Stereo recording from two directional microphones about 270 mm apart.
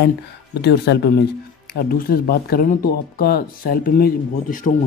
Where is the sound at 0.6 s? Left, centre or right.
Left.